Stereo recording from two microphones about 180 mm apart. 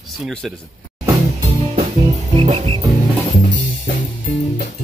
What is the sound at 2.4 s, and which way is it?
Music, 30° right (ahead or behind).